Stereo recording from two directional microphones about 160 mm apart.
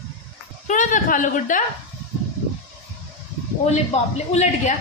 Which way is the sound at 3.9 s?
45° left (ahead or behind).